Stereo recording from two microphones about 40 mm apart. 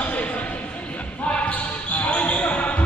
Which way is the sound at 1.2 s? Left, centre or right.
Left.